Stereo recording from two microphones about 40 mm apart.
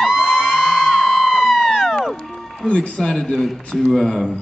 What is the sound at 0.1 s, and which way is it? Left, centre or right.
Music, centre.